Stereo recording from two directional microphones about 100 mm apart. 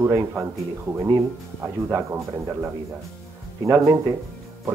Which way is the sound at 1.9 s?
25° right (ahead or behind).